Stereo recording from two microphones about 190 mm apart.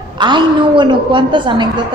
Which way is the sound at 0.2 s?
25° right (ahead or behind).